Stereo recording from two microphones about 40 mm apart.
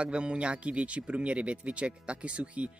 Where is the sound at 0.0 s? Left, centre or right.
Right.